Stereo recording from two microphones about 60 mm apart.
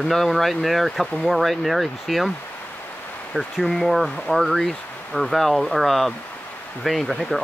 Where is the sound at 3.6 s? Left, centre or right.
Centre.